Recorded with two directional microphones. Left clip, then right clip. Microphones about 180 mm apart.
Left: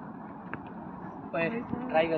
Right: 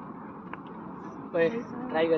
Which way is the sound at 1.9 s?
25° right (ahead or behind).